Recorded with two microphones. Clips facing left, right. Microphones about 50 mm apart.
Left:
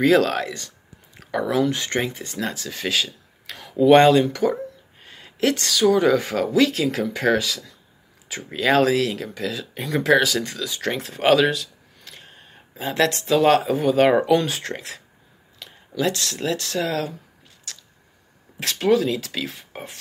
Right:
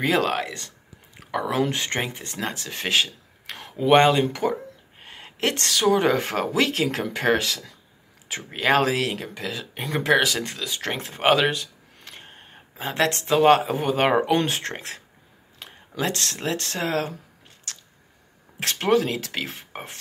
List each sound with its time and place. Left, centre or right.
0.0 s speech: right
3.7 s speech: right
5.0 s a sound: right
5.6 s speech: right
8.5 s speech: right
14.3 s speech: right
15.6 s a sound: right
16.4 s speech: right
18.6 s speech: right